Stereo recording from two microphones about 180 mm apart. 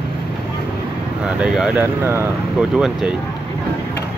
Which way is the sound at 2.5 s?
5° right (ahead or behind).